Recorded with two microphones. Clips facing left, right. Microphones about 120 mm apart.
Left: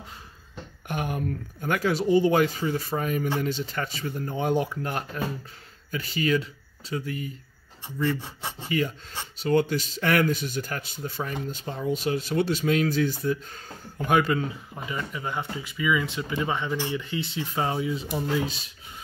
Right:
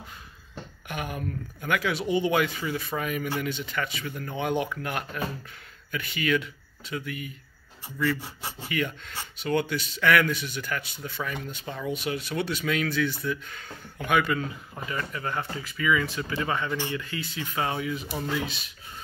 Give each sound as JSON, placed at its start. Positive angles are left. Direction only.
{"t": 0.8, "sound": "speech", "side_deg": 45}
{"t": 8.6, "sound": "speech", "side_deg": 35}
{"t": 12.8, "sound": "speech", "side_deg": -60}
{"t": 13.1, "sound": "speech", "side_deg": 45}
{"t": 14.9, "sound": "speech", "side_deg": 15}